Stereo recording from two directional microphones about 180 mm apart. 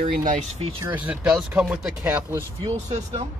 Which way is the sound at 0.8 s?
10° right (ahead or behind).